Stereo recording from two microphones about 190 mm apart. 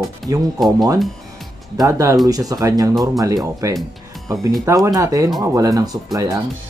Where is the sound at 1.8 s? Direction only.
15° right (ahead or behind).